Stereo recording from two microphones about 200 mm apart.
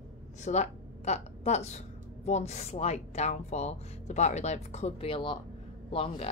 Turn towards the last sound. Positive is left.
turn(degrees=30)  # may be behind; listen again after turning